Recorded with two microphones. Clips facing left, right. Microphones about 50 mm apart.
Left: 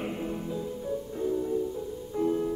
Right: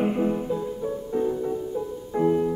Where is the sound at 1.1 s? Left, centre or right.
Right.